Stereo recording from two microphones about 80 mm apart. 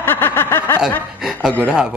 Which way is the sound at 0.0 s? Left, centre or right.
Left.